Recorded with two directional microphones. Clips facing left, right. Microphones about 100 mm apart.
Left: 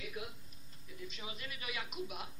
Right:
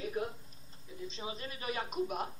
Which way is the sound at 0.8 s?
30° right (ahead or behind).